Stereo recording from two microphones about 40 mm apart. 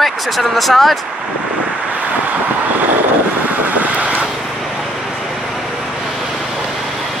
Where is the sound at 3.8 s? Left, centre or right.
Right.